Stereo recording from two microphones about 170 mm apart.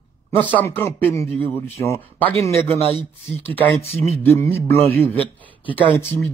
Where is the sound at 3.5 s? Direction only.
10° left (ahead or behind).